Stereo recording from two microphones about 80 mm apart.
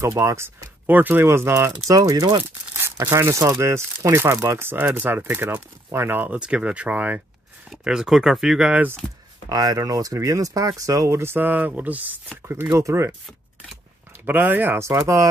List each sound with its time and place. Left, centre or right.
0.0 s speech: right
0.8 s speech: right
1.9 s speech: right
3.0 s speech: right; by 8.8 s centre
9.5 s speech: right
12.7 s speech: right
14.2 s speech: right